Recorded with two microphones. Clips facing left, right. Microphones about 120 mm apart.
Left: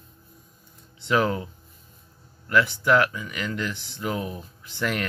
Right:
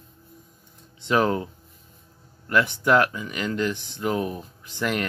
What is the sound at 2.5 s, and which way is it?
Speech, 25° right (ahead or behind).